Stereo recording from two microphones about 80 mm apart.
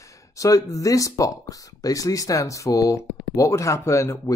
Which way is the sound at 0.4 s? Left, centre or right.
Left.